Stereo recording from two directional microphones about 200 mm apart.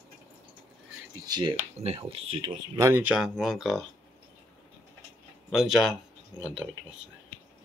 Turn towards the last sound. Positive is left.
turn(degrees=-5)  # may be behind; listen again after turning